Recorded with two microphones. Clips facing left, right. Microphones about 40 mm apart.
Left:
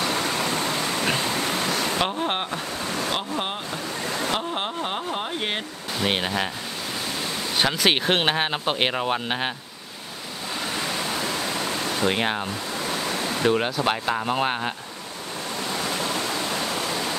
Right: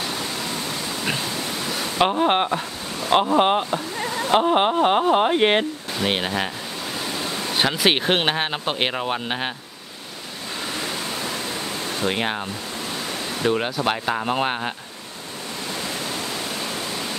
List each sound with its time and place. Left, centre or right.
2.0 s speech: centre
3.1 s speech: right
5.9 s speech: centre
7.5 s speech: centre
12.1 s speech: centre
13.5 s speech: centre